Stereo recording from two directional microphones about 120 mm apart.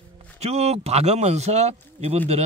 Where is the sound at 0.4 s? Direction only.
60° right (ahead or behind).